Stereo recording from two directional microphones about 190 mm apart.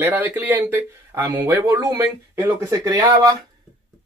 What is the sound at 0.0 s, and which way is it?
Speech, 10° right (ahead or behind).